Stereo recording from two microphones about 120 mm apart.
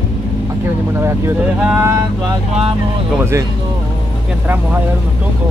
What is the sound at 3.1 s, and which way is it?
Speech, 20° right (ahead or behind).